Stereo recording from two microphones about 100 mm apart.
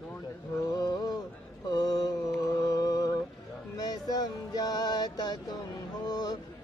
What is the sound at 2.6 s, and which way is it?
Music, 40° left (ahead or behind).